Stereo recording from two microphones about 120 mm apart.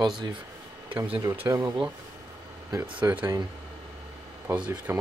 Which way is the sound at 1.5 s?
25° right (ahead or behind).